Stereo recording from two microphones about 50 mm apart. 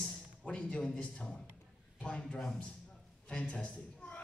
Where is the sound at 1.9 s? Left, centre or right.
Left.